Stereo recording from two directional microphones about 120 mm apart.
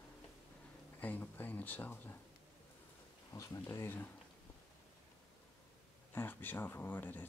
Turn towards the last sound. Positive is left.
turn(degrees=15)  # may be behind; listen again after turning